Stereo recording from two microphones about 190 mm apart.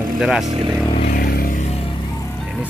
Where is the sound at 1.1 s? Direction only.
55° left (ahead or behind).